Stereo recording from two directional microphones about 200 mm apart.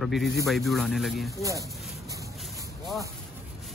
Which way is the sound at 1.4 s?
15° right (ahead or behind).